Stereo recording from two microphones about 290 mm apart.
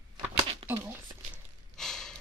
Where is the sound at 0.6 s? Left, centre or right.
Centre.